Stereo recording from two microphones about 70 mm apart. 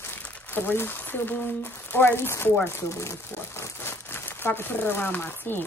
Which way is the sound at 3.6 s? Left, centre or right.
Left.